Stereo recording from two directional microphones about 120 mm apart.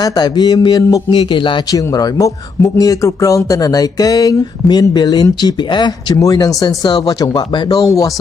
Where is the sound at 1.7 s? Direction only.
30° left (ahead or behind).